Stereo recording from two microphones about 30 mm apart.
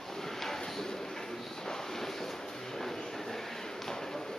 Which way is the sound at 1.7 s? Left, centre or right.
Centre.